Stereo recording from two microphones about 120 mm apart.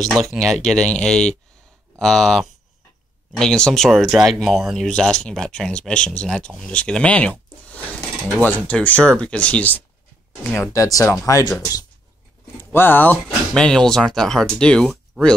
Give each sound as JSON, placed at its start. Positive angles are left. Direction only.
{"t": 0.0, "sound": "speech", "side_deg": 0}
{"t": 10.5, "sound": "speech", "side_deg": 25}
{"t": 12.5, "sound": "speech", "side_deg": 20}